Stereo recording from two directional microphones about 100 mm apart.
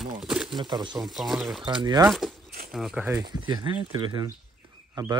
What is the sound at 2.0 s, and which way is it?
Speech, centre (ahead or behind).